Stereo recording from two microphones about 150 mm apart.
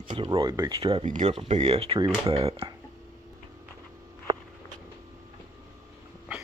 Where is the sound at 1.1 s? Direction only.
55° right (ahead or behind).